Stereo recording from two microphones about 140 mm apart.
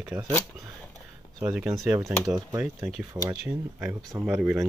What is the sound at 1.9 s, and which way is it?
Speech, 20° right (ahead or behind).